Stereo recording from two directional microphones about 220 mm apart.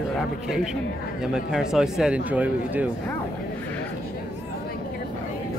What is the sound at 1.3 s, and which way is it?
Speech, centre (ahead or behind).